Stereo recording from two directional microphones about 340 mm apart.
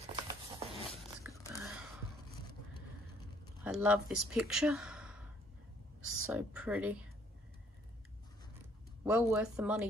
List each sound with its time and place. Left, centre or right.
0.0 s a sound: centre
1.2 s biting: centre
3.6 s speech: centre
6.3 s speech: centre
9.0 s speech: centre